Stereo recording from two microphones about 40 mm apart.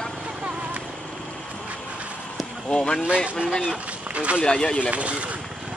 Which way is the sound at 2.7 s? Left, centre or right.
Left.